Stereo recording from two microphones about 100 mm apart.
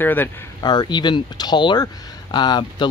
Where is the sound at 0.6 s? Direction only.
45° left (ahead or behind).